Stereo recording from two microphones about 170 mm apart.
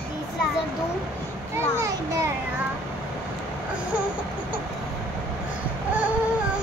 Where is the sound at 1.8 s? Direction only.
15° right (ahead or behind).